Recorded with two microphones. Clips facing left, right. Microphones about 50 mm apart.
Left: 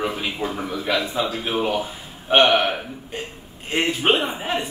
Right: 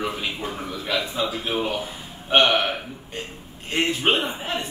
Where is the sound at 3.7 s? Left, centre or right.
Centre.